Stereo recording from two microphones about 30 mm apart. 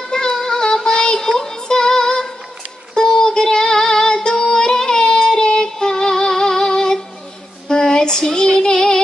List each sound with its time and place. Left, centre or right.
0.1 s music: left
2.9 s female singing: left
5.0 s child singing: left
8.6 s music: left